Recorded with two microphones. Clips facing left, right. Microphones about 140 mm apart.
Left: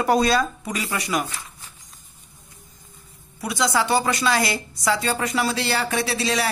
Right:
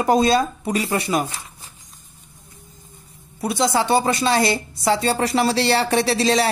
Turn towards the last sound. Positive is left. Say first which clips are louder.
# right 5 dB
turn(degrees=-35)  # may be behind; listen again after turning